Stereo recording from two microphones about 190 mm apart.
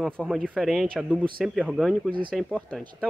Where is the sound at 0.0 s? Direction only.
Centre (ahead or behind).